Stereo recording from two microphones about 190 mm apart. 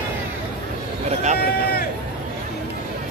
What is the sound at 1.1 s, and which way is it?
Speech, 35° right (ahead or behind).